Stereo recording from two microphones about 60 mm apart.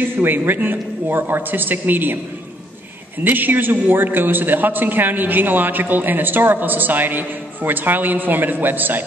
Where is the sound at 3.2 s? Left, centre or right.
Right.